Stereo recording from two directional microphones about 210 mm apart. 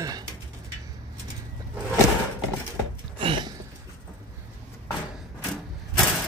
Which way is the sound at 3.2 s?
25° right (ahead or behind).